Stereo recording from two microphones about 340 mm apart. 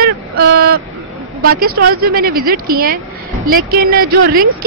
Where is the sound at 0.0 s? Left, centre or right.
Right.